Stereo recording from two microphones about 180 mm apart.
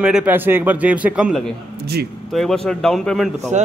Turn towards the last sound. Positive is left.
turn(degrees=-40)  # may be behind; listen again after turning